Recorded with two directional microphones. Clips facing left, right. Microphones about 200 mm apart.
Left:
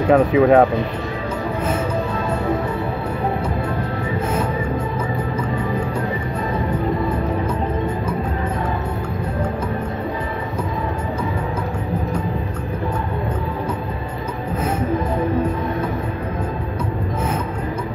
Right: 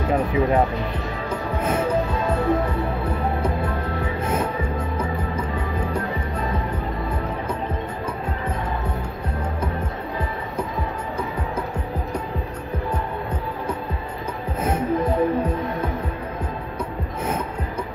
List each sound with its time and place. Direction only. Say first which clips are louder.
0.1 s speech: left 8 dB; 85° left